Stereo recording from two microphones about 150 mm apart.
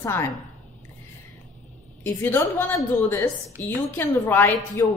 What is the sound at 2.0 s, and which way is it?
A woman's voice, 15° left (ahead or behind).